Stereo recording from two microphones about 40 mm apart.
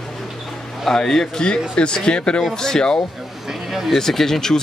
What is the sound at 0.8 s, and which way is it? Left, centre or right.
Speech, centre.